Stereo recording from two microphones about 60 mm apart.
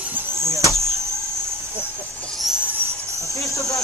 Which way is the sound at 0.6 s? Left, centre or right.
Right.